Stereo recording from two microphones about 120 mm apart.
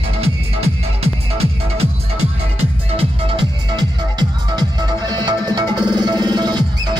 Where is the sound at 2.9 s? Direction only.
50° right (ahead or behind).